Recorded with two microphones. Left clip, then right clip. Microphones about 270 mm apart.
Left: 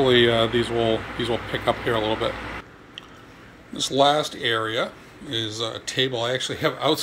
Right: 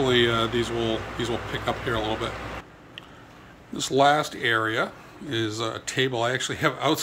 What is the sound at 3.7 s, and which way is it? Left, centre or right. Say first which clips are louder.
Speech: left 1 dB; centre.